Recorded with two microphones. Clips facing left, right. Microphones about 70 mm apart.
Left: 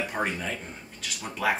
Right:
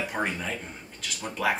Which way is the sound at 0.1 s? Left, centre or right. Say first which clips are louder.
Even; centre.